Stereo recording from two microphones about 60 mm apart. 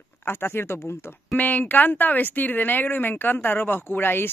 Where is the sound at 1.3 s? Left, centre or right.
Left.